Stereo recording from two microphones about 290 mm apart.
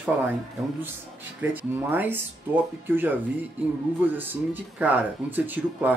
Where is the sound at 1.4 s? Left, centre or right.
Centre.